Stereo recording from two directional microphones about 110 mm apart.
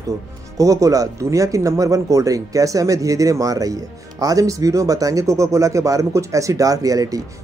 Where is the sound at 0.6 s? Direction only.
30° right (ahead or behind).